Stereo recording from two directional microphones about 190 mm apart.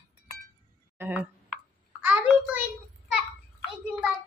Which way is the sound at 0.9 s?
10° right (ahead or behind).